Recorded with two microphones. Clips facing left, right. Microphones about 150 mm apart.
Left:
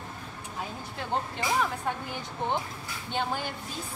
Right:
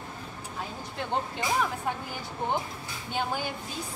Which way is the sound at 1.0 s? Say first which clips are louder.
Right 1 dB; centre (ahead or behind).